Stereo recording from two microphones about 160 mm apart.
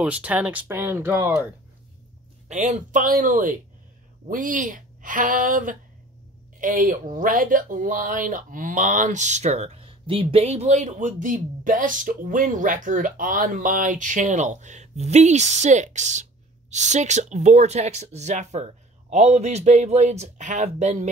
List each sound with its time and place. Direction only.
0.0 s speech: 10° right (ahead or behind)
2.4 s a woman's voice: 50° right (ahead or behind)